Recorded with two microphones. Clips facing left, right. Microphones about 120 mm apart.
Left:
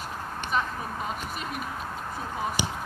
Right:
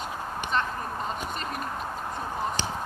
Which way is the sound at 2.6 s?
10° left (ahead or behind).